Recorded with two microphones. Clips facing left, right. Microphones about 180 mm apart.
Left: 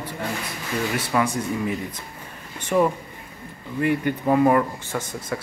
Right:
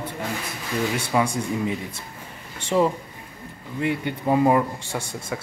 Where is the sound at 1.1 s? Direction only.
15° right (ahead or behind).